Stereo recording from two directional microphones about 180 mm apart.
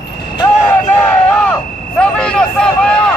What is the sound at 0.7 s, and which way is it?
Vehicle, 10° left (ahead or behind).